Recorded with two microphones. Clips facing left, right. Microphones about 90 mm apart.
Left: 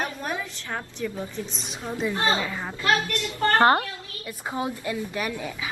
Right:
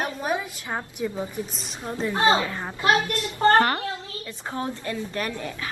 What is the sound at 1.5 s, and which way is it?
Speech, centre (ahead or behind).